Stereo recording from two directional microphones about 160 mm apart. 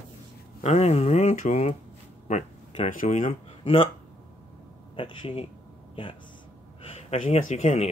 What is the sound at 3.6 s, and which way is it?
Speech, 35° left (ahead or behind).